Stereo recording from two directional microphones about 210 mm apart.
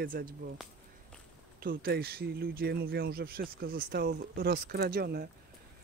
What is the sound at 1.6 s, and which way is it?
Speech, 45° right (ahead or behind).